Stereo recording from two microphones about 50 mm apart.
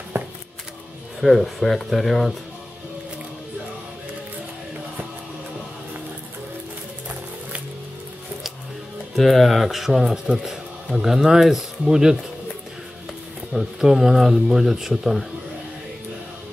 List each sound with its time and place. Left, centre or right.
0.1 s a sound: right
1.2 s speech: centre
9.1 s speech: centre
13.5 s speech: centre